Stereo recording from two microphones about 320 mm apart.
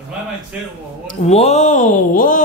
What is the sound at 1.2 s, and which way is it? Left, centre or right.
Speech, centre.